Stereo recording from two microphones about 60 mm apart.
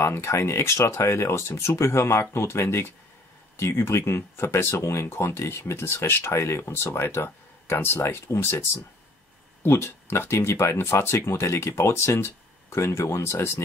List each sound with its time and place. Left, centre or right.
0.0 s speech: left
6.6 s speech: left